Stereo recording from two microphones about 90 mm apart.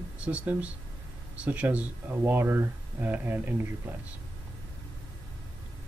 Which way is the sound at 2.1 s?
30° right (ahead or behind).